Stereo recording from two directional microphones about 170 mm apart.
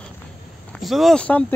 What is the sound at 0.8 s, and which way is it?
Speech, centre (ahead or behind).